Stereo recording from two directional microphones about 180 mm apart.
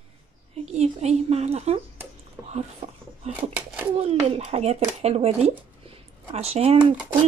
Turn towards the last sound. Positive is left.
turn(degrees=-30)  # may be behind; listen again after turning